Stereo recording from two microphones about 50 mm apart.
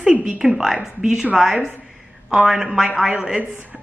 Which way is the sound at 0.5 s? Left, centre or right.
Centre.